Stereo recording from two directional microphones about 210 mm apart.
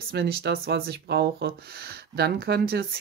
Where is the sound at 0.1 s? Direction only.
50° right (ahead or behind).